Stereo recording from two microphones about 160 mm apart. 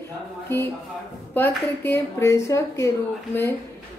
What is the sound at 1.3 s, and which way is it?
A woman's voice, 15° left (ahead or behind).